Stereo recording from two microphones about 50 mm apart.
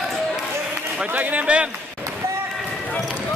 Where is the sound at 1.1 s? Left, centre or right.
Right.